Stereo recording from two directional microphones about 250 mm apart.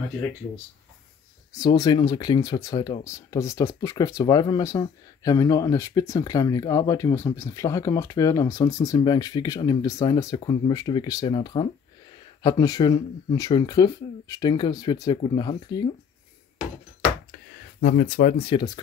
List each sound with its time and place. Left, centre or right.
1.5 s speech: centre
17.8 s speech: left; by 18.8 s centre